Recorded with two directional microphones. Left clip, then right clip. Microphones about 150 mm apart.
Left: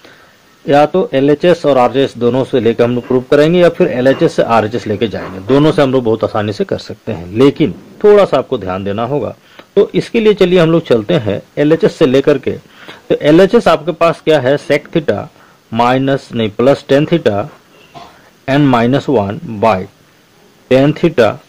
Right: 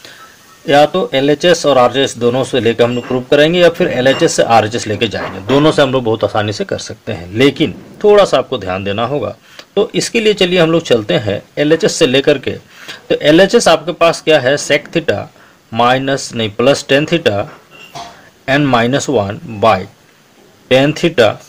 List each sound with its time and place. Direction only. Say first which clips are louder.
0.7 s speech: even; 35° left (ahead or behind)